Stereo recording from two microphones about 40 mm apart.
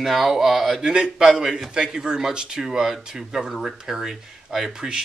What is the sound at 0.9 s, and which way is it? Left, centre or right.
Speech, centre.